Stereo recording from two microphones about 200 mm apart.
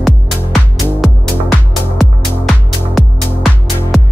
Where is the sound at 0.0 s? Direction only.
Centre (ahead or behind).